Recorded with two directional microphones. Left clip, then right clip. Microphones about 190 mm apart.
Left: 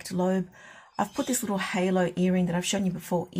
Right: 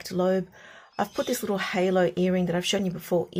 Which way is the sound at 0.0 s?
15° right (ahead or behind).